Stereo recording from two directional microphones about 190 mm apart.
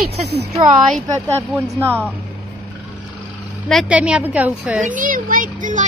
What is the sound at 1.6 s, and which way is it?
Speech, 15° right (ahead or behind).